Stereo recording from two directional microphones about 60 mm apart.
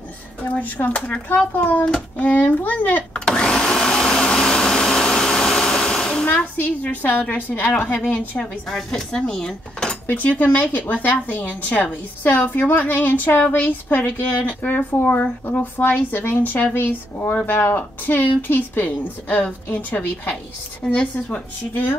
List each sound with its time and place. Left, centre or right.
0.4 s a woman's voice: left
3.3 s vacuum cleaner: centre
6.2 s a woman's voice: left
8.6 s dishes: centre
10.7 s a woman's voice: left
20.8 s speech: centre
21.3 s speech: left